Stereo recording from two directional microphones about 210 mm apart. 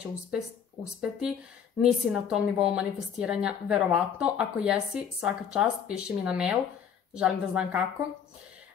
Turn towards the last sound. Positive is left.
turn(degrees=-5)  # may be behind; listen again after turning